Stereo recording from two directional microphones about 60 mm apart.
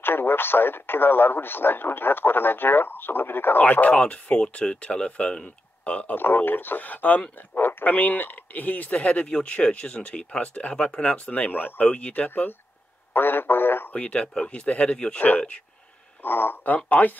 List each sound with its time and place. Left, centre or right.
0.0 s speech: left
6.1 s speech: left
13.9 s speech: left
16.2 s speech: left